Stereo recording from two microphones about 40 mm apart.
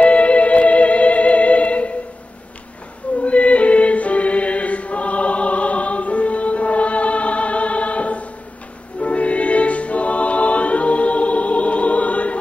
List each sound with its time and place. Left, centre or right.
0.0 s music: left
3.3 s choir: left
9.0 s music: left